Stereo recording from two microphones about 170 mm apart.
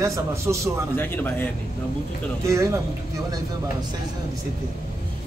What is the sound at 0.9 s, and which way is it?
Speech, 10° left (ahead or behind).